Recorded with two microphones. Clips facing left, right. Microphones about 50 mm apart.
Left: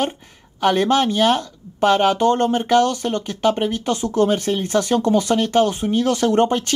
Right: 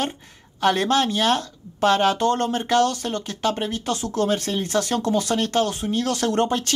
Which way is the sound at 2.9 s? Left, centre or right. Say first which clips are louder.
Left 4 dB; left.